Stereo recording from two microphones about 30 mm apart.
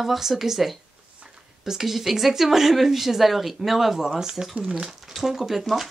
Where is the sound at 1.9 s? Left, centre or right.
Centre.